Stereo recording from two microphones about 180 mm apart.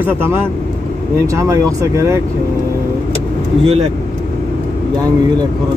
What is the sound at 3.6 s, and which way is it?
Speech, 35° right (ahead or behind).